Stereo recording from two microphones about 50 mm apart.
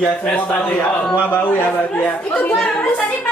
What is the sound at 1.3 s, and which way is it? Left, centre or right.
Speech, left.